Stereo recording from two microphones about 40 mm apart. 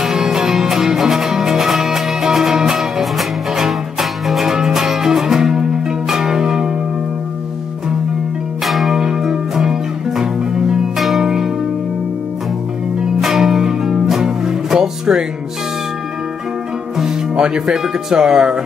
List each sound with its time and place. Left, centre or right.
0.0 s music: centre
8.6 s music: centre
9.0 s music: centre
11.0 s music: centre
11.2 s church bell: centre
13.2 s music: centre
18.1 s speech: centre